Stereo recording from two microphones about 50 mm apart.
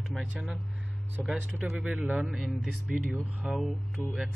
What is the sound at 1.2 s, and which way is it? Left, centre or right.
Speech, centre.